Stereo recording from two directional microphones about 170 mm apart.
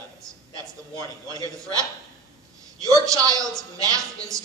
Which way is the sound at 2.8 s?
20° right (ahead or behind).